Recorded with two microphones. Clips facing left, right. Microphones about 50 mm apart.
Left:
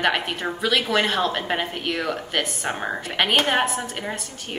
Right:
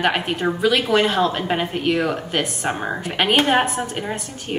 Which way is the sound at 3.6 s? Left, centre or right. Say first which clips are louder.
Right 3 dB; centre.